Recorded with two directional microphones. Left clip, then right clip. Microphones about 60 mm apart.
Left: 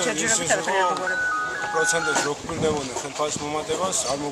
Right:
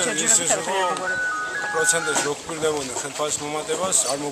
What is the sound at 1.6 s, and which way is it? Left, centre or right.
Speech, centre.